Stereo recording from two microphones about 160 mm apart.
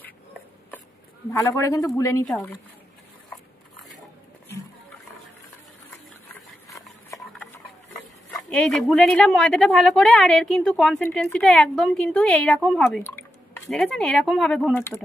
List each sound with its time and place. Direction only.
1.3 s a man's voice: 20° left (ahead or behind)
8.3 s speech: centre (ahead or behind)